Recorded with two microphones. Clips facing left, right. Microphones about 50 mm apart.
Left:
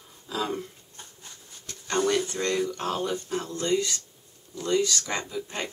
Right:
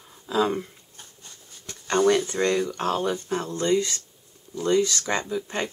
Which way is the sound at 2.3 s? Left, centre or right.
Right.